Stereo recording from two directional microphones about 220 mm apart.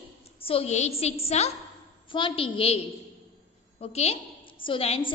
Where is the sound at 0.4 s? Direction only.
25° left (ahead or behind).